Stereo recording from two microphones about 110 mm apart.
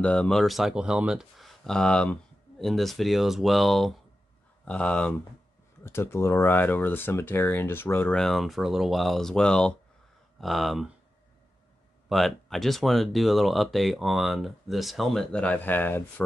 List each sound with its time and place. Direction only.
0.0 s speech: 10° left (ahead or behind)
5.9 s speech: 20° left (ahead or behind)
8.1 s speech: 5° left (ahead or behind)
12.1 s speech: centre (ahead or behind); by 16.3 s 20° left (ahead or behind)